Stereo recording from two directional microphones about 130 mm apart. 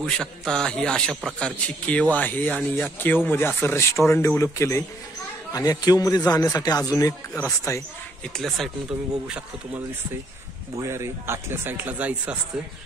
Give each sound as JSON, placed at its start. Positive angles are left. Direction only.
{"t": 0.0, "sound": "a man's voice", "side_deg": 5}
{"t": 8.4, "sound": "a man's voice", "side_deg": 0}
{"t": 10.8, "sound": "speech", "side_deg": -20}